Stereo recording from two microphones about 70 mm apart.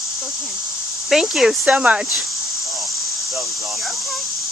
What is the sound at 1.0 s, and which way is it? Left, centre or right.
Speech, centre.